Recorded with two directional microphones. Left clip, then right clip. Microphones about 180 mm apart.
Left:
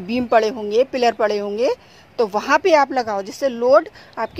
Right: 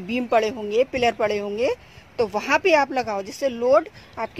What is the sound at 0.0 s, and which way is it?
Speech, 20° left (ahead or behind).